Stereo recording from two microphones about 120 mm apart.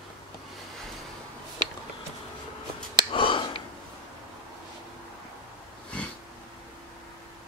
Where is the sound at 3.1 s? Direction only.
45° left (ahead or behind).